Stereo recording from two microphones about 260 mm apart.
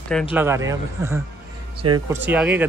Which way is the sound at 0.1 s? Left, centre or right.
Centre.